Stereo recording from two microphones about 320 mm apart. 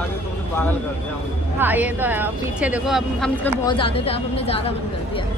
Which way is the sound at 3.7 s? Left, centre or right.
Centre.